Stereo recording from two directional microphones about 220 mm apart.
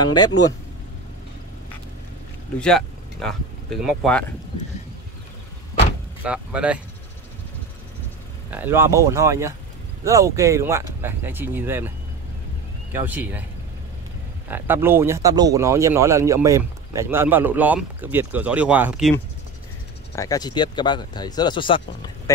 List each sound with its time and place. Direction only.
2.6 s speech: 5° left (ahead or behind)
6.2 s speech: 5° right (ahead or behind)
8.5 s speech: 10° right (ahead or behind)
12.9 s speech: 10° right (ahead or behind)
14.5 s speech: 10° right (ahead or behind)
20.2 s speech: 15° left (ahead or behind)